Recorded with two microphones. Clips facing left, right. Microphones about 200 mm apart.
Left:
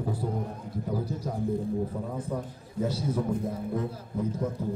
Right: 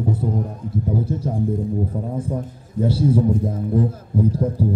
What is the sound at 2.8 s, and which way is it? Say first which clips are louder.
A man's voice: right 10 dB; 30° right (ahead or behind).